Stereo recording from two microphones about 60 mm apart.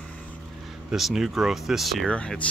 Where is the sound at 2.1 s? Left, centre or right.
Centre.